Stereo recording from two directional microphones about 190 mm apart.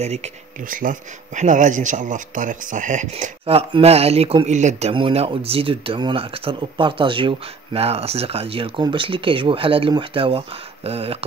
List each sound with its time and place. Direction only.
0.0 s speech: 35° right (ahead or behind)